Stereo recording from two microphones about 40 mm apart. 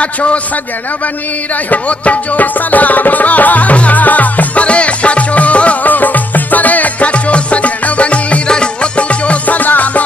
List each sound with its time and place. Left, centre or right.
0.0 s a man's voice: left
1.7 s music: left
5.9 s music: left
9.6 s music: left